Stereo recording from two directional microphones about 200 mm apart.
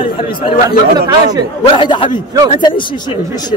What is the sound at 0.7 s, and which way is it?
Speech, 20° right (ahead or behind).